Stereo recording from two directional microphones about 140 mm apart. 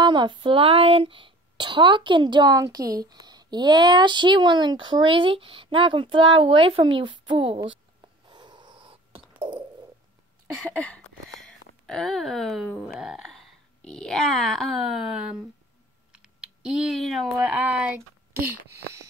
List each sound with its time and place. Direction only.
0.0 s speech: 35° right (ahead or behind)
8.3 s a sound: 30° right (ahead or behind)
10.8 s speech: 5° left (ahead or behind)
16.1 s typing: 5° right (ahead or behind)
17.4 s speech: 10° right (ahead or behind)